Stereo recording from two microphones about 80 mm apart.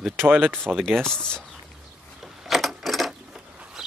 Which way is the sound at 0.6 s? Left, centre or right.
Centre.